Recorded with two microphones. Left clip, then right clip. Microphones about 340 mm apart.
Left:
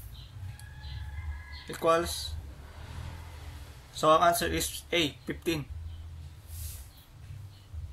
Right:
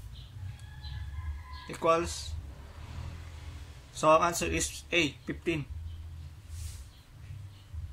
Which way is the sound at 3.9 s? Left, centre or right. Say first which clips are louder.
Left 1 dB; centre.